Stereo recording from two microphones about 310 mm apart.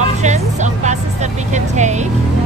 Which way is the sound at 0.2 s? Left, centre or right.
Right.